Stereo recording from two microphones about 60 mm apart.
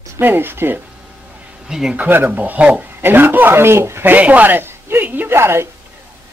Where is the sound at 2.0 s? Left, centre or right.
Right.